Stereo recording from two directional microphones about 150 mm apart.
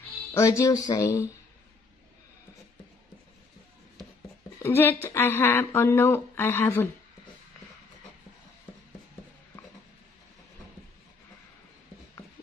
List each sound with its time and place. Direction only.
0.3 s speech: 20° left (ahead or behind)
4.6 s speech: 15° left (ahead or behind)